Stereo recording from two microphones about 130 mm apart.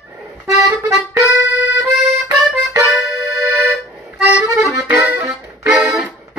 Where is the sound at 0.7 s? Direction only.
25° right (ahead or behind).